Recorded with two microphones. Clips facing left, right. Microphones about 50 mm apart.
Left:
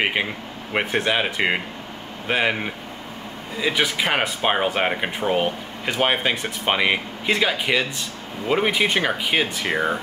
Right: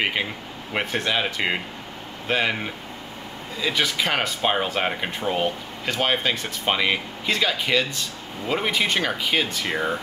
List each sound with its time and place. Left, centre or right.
0.0 s speech: centre